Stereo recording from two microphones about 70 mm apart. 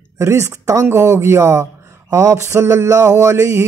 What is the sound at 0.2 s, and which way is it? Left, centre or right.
Speech, right.